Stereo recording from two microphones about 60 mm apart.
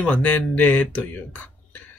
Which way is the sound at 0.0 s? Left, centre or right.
Left.